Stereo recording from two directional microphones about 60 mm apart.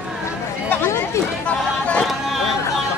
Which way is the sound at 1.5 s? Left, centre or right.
Left.